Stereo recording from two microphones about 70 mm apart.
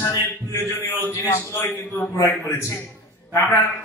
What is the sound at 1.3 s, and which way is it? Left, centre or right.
A man's voice, left.